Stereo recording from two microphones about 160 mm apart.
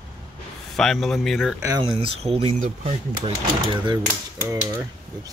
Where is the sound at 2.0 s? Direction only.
35° right (ahead or behind).